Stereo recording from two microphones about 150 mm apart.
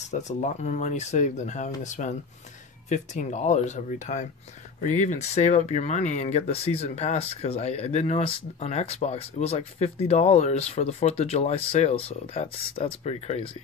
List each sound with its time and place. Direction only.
0.1 s speech: 50° left (ahead or behind)